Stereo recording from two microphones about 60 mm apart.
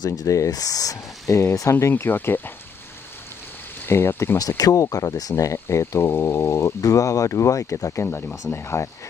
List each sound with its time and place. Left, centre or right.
0.0 s speech: left
1.3 s speech: left
3.8 s speech: left
4.4 s speech: left
6.8 s speech: left